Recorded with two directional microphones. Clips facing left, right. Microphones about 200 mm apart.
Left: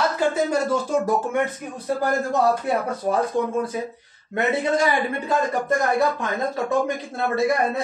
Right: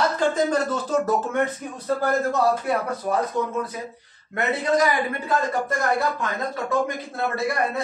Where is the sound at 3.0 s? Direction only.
30° left (ahead or behind).